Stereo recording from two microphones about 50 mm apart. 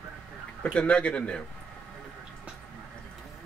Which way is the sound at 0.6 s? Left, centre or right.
Centre.